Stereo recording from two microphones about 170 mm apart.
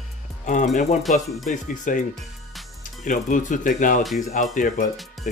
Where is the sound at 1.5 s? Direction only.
50° left (ahead or behind).